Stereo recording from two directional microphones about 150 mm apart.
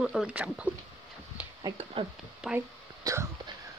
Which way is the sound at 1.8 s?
40° right (ahead or behind).